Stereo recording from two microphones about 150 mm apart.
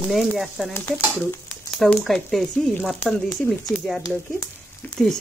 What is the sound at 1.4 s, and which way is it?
Speech, centre (ahead or behind).